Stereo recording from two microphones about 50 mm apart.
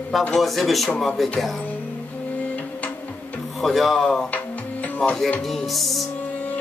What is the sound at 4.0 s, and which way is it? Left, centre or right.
Speech, centre.